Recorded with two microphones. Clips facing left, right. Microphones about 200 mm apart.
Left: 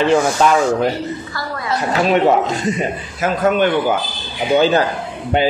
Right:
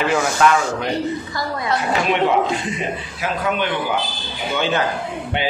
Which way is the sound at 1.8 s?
40° left (ahead or behind).